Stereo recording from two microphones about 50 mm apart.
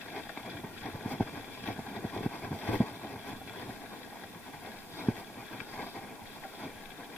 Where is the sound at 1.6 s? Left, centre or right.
Left.